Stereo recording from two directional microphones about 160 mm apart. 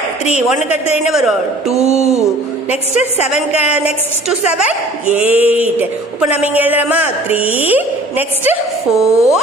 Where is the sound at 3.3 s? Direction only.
10° right (ahead or behind).